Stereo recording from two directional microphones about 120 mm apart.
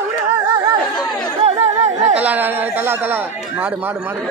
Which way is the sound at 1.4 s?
65° right (ahead or behind).